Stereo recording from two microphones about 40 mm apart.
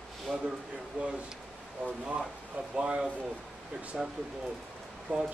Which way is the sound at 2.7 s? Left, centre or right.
Right.